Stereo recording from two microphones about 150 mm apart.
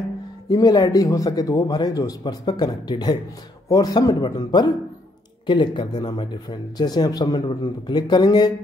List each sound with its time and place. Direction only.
0.5 s speech: 25° left (ahead or behind)